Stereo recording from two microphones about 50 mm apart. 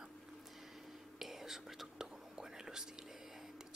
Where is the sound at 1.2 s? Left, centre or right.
Centre.